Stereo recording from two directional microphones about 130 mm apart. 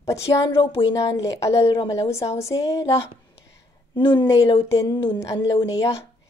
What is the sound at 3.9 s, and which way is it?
Speech, 35° left (ahead or behind).